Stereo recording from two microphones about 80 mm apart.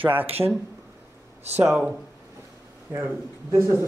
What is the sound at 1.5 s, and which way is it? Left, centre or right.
Speech, right.